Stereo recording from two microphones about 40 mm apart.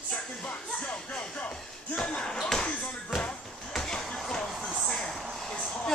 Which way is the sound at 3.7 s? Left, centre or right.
Centre.